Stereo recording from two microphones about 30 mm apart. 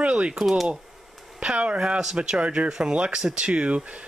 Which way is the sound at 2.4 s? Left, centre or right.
Right.